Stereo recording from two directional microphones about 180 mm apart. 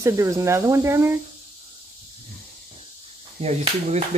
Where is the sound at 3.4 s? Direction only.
40° right (ahead or behind).